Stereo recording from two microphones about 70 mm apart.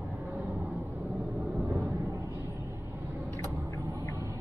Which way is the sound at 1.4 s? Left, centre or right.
Right.